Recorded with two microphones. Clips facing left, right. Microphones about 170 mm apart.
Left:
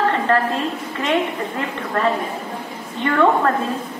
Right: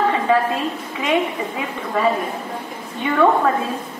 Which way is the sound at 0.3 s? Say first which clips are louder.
Right 1 dB; 10° right (ahead or behind).